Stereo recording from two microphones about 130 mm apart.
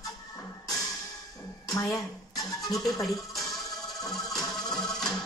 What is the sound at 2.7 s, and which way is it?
Speech, centre (ahead or behind).